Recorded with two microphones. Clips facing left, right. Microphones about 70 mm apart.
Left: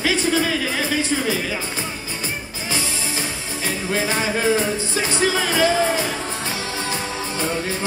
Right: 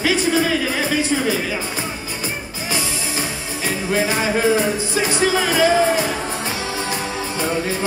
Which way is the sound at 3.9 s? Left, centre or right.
Centre.